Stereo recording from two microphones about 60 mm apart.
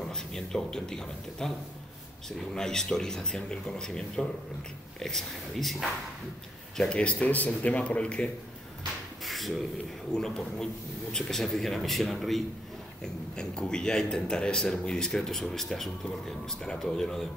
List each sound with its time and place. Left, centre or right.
0.1 s speech: centre
6.8 s speech: centre
9.2 s a sound: centre
10.1 s speech: centre
13.0 s speech: centre